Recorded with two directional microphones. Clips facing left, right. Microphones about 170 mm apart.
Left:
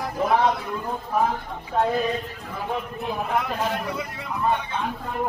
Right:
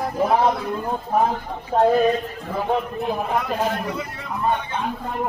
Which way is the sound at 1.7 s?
35° right (ahead or behind).